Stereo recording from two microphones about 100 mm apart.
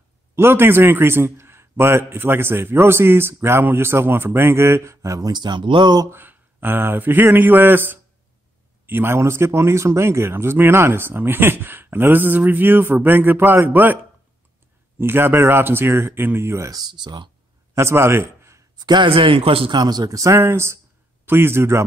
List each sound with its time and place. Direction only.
0.4 s a man's voice: 25° right (ahead or behind); by 6.0 s 50° right (ahead or behind)
6.0 s a man's voice: 20° right (ahead or behind)
15.0 s a man's voice: 25° right (ahead or behind); by 17.3 s 50° right (ahead or behind)
17.7 s a man's voice: 25° right (ahead or behind)
18.8 s a man's voice: 50° right (ahead or behind); by 19.7 s 65° right (ahead or behind)
19.7 s a man's voice: 45° right (ahead or behind); by 21.8 s 25° right (ahead or behind)